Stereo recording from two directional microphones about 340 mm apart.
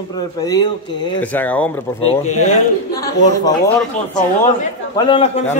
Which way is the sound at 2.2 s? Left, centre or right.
Centre.